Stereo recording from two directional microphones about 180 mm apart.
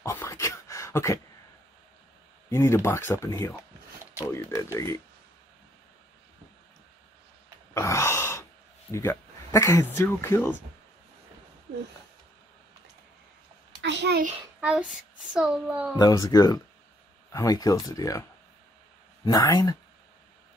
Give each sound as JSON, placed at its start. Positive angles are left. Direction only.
{"t": 0.0, "sound": "a sound", "side_deg": 15}
{"t": 2.5, "sound": "speech", "side_deg": 15}
{"t": 7.7, "sound": "sigh", "side_deg": 15}
{"t": 8.9, "sound": "speech", "side_deg": 15}
{"t": 13.7, "sound": "a sound", "side_deg": -75}
{"t": 14.6, "sound": "a child's voice", "side_deg": -5}
{"t": 16.0, "sound": "speech", "side_deg": 20}
{"t": 19.2, "sound": "speech", "side_deg": 20}